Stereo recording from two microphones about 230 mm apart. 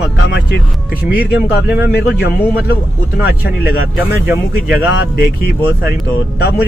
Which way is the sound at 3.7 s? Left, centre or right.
Centre.